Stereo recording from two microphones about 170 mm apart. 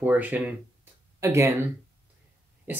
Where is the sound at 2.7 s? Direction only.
10° right (ahead or behind).